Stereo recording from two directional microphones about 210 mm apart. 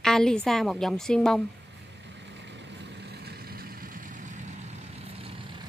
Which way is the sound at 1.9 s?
55° right (ahead or behind).